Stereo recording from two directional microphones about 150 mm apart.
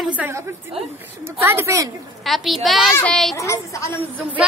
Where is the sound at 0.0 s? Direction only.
10° right (ahead or behind).